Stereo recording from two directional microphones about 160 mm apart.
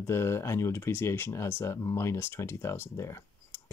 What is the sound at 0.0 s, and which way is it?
Speech, 15° left (ahead or behind).